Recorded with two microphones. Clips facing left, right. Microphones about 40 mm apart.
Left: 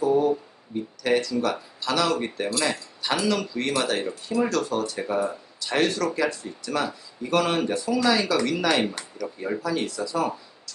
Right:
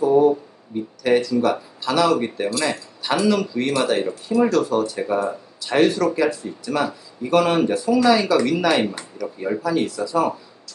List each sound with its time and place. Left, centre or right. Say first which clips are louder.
1.0 s speech: right 5 dB; centre